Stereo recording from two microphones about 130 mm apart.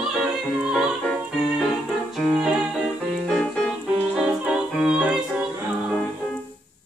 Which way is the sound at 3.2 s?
5° left (ahead or behind).